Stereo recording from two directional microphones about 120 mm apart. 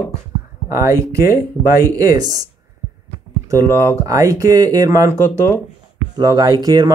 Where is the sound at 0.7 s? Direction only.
25° right (ahead or behind).